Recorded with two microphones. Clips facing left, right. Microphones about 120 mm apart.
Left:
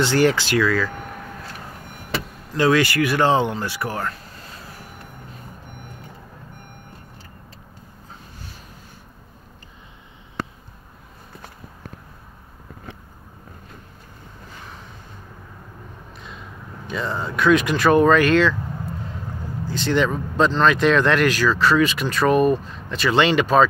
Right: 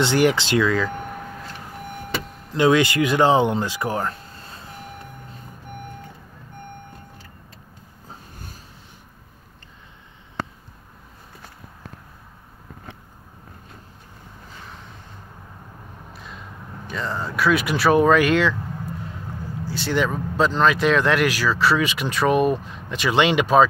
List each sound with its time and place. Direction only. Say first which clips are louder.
0.0 s speech: even; 15° right (ahead or behind)
2.5 s speech: right 1 dB; 20° right (ahead or behind)
16.1 s a sound: right 1 dB; 5° right (ahead or behind)
16.8 s speech: left 2 dB; centre (ahead or behind)
19.6 s speech: left 2 dB; 10° right (ahead or behind)